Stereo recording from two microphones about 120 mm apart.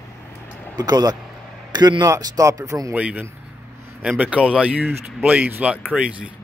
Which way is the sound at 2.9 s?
10° right (ahead or behind).